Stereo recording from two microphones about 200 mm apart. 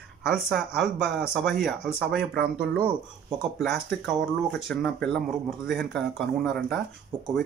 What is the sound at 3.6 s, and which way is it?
Speech, centre (ahead or behind).